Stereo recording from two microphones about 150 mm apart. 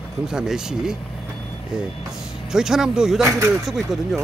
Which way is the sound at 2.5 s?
5° right (ahead or behind).